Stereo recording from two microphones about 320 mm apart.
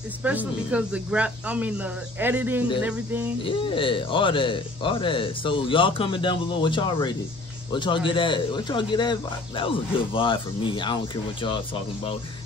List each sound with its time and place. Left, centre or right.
0.2 s speech: centre
3.4 s a man's voice: centre